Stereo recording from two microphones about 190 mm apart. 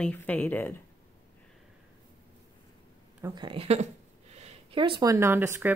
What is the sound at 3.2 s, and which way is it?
Speech, 20° right (ahead or behind).